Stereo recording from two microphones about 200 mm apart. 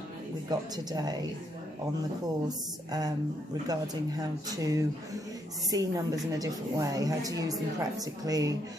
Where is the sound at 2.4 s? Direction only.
20° right (ahead or behind).